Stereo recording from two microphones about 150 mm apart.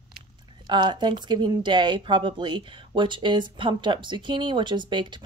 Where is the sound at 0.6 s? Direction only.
30° right (ahead or behind).